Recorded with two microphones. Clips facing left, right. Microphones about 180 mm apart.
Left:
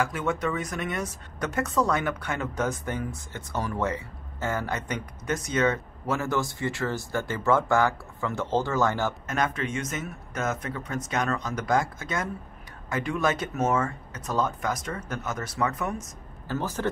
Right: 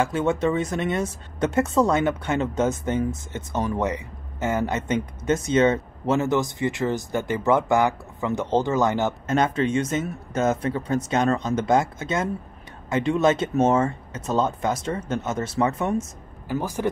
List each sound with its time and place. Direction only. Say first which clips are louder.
0.0 s speech: right 5 dB; 25° right (ahead or behind)
16.4 s a man's voice: right 3 dB; 15° right (ahead or behind)